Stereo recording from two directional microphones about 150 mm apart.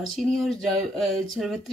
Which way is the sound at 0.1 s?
Centre (ahead or behind).